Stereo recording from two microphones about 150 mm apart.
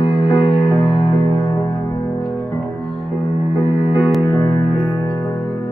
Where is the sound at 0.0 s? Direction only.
35° left (ahead or behind).